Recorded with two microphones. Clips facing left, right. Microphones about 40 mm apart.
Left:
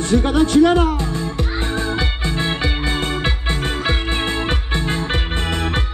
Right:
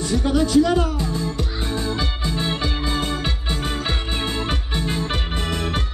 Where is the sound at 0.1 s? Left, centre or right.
Left.